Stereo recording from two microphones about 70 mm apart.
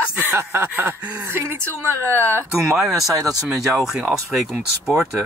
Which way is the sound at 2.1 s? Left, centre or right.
Left.